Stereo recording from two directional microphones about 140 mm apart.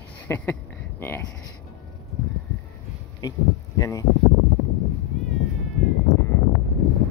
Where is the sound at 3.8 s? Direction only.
25° left (ahead or behind).